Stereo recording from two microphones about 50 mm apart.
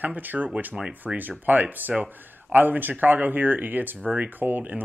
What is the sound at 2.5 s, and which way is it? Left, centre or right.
Speech, right.